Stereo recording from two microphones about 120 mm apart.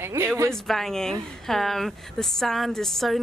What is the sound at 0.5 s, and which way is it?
Speech, centre (ahead or behind).